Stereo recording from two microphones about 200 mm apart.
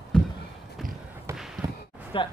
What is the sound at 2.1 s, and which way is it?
Speech, 25° left (ahead or behind).